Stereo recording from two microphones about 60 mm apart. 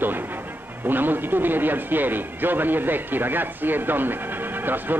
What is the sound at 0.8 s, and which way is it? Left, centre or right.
Speech, right.